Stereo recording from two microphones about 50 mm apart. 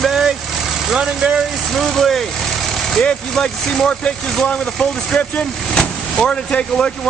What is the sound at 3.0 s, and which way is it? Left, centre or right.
Speech, centre.